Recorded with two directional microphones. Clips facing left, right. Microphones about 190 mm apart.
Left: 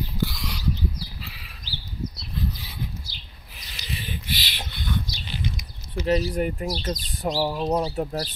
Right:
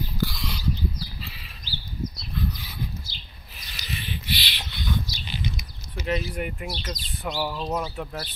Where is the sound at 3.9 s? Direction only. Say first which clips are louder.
Even; 45° left (ahead or behind).